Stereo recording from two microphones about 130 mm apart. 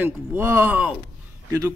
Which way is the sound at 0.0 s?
15° right (ahead or behind).